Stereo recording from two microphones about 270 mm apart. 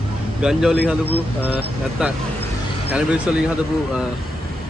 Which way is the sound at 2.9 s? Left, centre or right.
Centre.